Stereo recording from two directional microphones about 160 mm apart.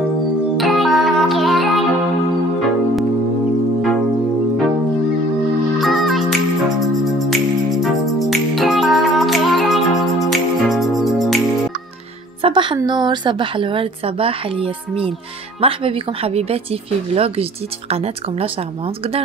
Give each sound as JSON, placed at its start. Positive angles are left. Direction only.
{"t": 0.6, "sound": "music", "side_deg": 0}
{"t": 5.8, "sound": "music", "side_deg": 0}
{"t": 12.4, "sound": "music", "side_deg": -35}
{"t": 12.7, "sound": "speech", "side_deg": -25}